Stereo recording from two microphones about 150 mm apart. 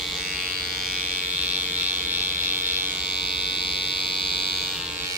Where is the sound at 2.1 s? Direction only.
15° right (ahead or behind).